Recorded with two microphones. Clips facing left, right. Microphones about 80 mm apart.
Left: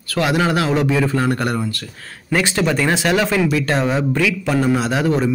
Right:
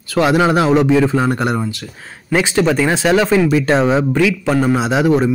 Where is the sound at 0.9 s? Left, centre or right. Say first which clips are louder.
Right 4 dB; centre.